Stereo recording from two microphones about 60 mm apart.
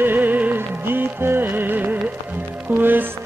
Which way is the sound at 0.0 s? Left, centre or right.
Right.